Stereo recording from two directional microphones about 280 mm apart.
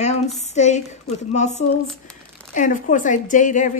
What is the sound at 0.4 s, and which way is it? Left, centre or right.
A woman's voice, left.